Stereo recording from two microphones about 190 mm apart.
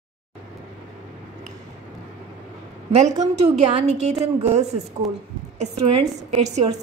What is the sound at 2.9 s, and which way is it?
A woman's voice, 35° right (ahead or behind).